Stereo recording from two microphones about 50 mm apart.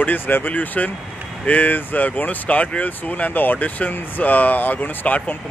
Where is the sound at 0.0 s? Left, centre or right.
Left.